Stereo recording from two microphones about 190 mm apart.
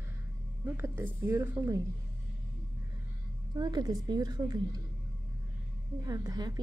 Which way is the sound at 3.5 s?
20° right (ahead or behind).